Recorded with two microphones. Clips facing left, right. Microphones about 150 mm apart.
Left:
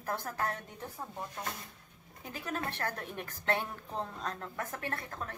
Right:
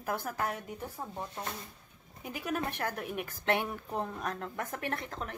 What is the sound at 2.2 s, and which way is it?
A woman's voice, 15° right (ahead or behind).